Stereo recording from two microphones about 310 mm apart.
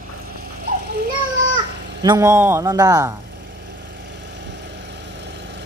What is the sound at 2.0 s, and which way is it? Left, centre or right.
A man's voice, centre.